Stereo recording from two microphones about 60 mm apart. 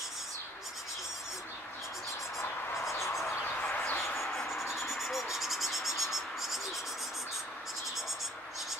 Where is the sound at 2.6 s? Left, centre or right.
Left.